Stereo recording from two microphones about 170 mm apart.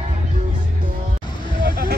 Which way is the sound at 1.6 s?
65° right (ahead or behind).